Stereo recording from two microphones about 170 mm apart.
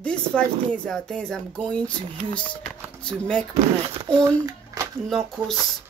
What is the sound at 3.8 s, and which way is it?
Speech, 35° right (ahead or behind).